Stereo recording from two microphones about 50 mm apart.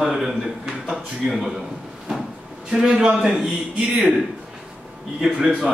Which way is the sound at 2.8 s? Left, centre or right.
Centre.